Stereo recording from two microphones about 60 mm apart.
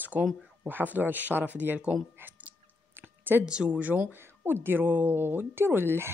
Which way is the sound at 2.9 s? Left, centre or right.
Right.